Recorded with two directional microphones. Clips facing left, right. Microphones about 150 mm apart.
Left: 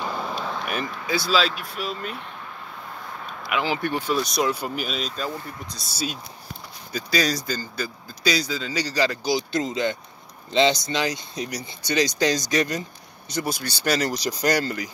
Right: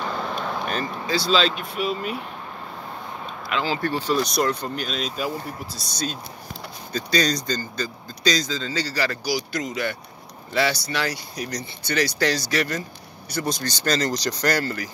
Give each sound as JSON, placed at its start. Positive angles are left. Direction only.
{"t": 0.0, "sound": "a sound", "side_deg": 5}
{"t": 1.3, "sound": "speech", "side_deg": 5}
{"t": 3.4, "sound": "speech", "side_deg": 15}
{"t": 4.1, "sound": "speech", "side_deg": 0}